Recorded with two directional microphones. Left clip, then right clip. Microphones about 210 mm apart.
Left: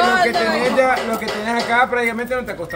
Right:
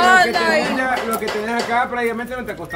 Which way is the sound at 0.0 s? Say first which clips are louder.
Right 2 dB; 45° right (ahead or behind).